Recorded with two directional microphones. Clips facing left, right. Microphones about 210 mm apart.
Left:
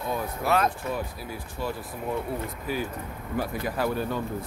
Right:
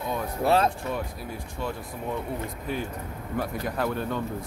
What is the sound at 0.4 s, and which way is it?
Speech, 30° right (ahead or behind).